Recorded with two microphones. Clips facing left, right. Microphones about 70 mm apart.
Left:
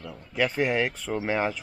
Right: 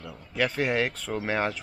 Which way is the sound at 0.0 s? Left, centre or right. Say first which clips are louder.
Left 1 dB; centre.